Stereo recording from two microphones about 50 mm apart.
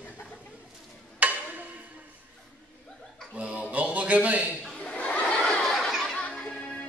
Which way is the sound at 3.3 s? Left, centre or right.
Right.